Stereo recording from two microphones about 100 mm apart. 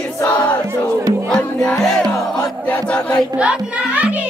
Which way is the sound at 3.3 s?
15° right (ahead or behind).